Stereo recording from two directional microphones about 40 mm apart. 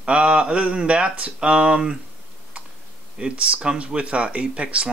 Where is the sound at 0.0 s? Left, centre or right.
Right.